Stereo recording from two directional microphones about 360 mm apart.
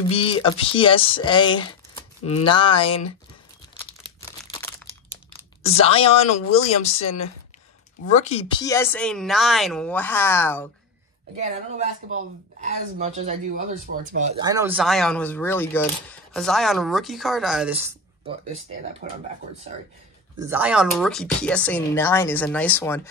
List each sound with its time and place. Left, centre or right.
0.1 s speech: centre
3.8 s a sound: centre
5.7 s speech: centre
8.1 s speech: centre
11.3 s speech: centre
19.0 s speech: right
20.3 s speech: centre